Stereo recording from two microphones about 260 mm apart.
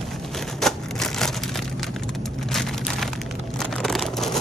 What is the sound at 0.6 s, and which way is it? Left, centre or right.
Typewriter, centre.